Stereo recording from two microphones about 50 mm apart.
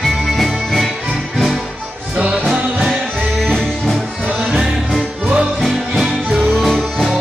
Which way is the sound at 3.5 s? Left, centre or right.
Centre.